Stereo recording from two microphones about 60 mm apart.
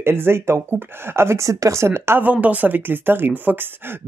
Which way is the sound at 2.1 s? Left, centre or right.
Right.